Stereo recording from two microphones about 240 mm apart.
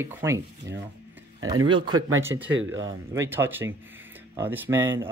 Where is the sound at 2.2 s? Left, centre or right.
Centre.